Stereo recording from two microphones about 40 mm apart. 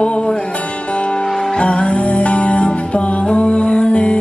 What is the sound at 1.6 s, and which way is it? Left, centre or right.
Music, left.